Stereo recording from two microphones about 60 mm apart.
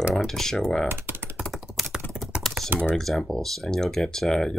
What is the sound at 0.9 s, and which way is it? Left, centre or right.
Speech, right.